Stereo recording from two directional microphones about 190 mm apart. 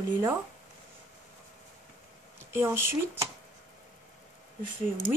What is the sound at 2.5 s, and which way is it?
Speech, 15° right (ahead or behind).